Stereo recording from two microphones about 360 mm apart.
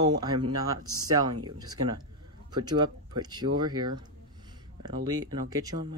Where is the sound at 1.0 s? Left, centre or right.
Centre.